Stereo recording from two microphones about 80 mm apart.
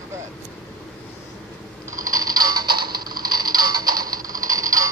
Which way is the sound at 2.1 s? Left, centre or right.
Right.